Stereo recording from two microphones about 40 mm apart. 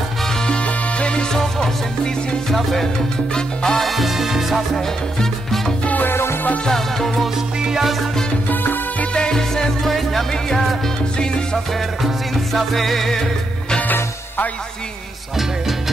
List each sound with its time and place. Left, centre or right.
0.5 s music: left
1.3 s music: centre
3.3 s salsa music: centre
3.8 s music: centre
4.7 s music: centre
6.0 s music: left
6.6 s music: centre
7.6 s music: centre
9.1 s music: left
9.4 s music: centre
10.3 s speech: centre
11.5 s music: centre